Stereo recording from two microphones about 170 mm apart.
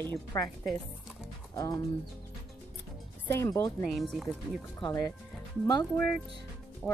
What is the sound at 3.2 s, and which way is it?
Speech, 15° left (ahead or behind).